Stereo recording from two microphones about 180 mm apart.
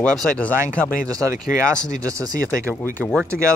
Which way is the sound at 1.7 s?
5° left (ahead or behind).